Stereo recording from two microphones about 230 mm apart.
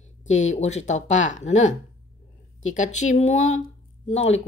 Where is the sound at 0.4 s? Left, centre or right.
Left.